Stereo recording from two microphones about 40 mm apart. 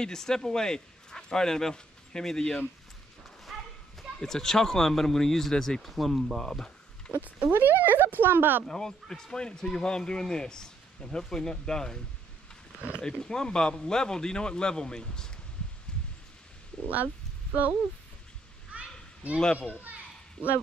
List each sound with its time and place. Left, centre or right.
0.0 s speech: centre
3.5 s a sound: centre
4.2 s speech: centre
7.1 s speech: right
7.5 s speech: right
8.6 s speech: centre
13.2 s speech: centre
16.8 s speech: right
18.7 s children playing: right